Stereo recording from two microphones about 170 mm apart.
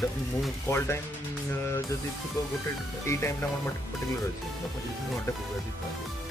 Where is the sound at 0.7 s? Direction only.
15° left (ahead or behind).